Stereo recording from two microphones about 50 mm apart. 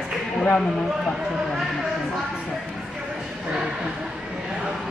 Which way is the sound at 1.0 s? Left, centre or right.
Centre.